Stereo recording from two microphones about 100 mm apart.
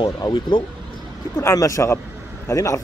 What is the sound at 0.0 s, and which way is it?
Speech, 45° left (ahead or behind).